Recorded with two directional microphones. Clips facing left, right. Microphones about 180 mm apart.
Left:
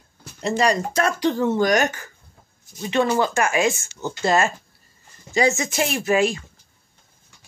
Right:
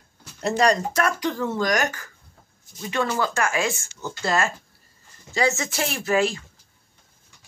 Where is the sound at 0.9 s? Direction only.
25° left (ahead or behind).